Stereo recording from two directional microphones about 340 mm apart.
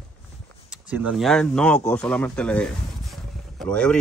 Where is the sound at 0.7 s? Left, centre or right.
Centre.